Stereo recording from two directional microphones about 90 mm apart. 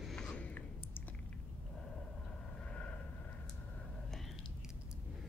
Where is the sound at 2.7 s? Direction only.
15° left (ahead or behind).